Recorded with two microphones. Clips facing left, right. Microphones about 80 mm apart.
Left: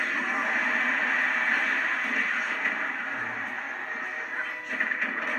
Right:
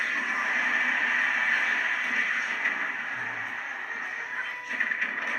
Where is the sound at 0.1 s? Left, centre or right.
Centre.